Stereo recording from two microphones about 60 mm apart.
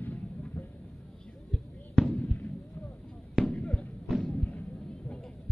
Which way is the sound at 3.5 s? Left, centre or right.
Centre.